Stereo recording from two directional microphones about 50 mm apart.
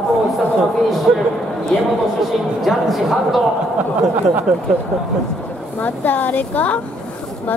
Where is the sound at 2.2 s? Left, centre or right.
Centre.